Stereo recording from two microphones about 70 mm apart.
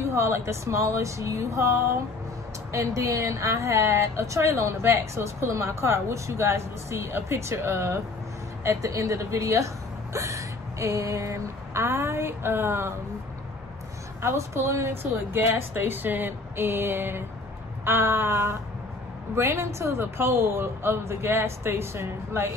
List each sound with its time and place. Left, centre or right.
0.0 s a woman's voice: right
8.6 s speech: right
10.1 s a sound: right
14.2 s a woman's voice: right